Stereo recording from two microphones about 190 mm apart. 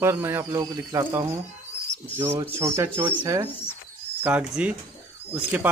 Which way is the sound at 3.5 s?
10° left (ahead or behind).